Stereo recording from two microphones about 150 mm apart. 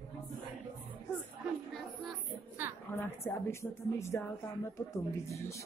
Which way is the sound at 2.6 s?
15° right (ahead or behind).